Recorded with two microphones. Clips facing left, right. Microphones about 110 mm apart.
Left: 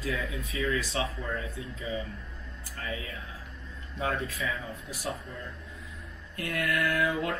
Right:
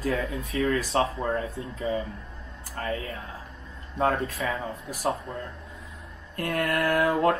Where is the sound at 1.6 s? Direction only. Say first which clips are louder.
Right 6 dB; 50° right (ahead or behind).